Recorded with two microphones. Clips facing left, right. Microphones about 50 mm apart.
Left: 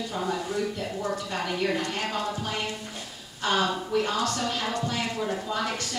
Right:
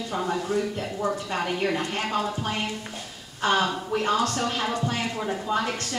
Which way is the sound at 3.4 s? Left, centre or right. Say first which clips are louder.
Right 2 dB; right.